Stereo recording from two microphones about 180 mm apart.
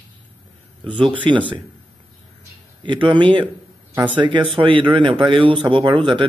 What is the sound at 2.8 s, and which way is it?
Speech, 25° right (ahead or behind).